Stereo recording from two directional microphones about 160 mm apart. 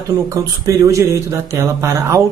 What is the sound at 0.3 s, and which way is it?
Speech, 20° right (ahead or behind).